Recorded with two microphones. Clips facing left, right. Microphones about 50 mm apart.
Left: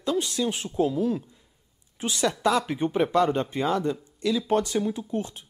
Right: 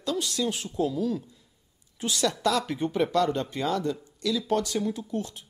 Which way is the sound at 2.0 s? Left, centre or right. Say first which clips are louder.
Left 2 dB; left.